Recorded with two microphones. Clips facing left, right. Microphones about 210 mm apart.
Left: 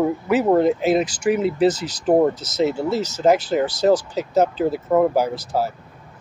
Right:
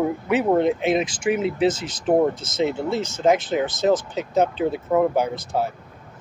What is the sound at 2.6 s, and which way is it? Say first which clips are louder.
Speech: left 2 dB; 5° left (ahead or behind).